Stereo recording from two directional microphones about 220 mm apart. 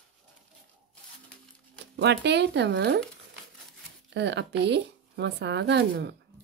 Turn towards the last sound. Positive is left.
turn(degrees=-50)  # may be behind; listen again after turning